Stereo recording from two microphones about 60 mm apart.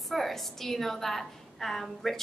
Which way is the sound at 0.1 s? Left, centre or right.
Centre.